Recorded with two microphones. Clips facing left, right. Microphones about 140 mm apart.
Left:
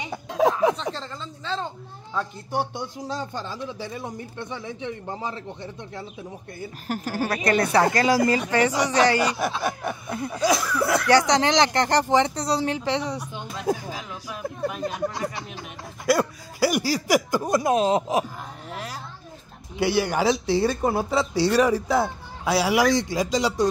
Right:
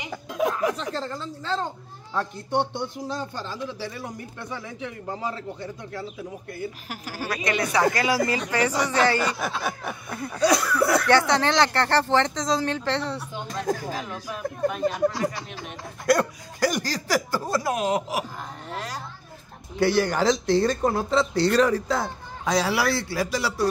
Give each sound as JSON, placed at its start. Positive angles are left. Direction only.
{"t": 0.5, "sound": "speech", "side_deg": 25}
{"t": 2.1, "sound": "speech", "side_deg": 5}
{"t": 6.9, "sound": "a woman's voice", "side_deg": 50}
{"t": 7.4, "sound": "speech", "side_deg": 35}
{"t": 9.4, "sound": "snicker", "side_deg": 0}
{"t": 10.0, "sound": "speech", "side_deg": 25}
{"t": 10.3, "sound": "snicker", "side_deg": 5}
{"t": 11.2, "sound": "speech", "side_deg": 15}
{"t": 14.8, "sound": "snicker", "side_deg": 0}
{"t": 16.1, "sound": "speech", "side_deg": 5}
{"t": 18.7, "sound": "a sound", "side_deg": 10}
{"t": 19.8, "sound": "speech", "side_deg": 10}